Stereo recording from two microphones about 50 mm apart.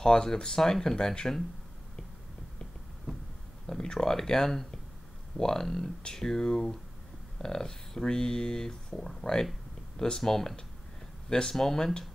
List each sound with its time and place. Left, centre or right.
0.0 s speech: centre
3.1 s a sound: centre
3.6 s speech: centre